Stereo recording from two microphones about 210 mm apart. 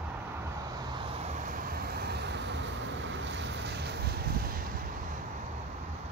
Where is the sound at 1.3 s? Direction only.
40° right (ahead or behind).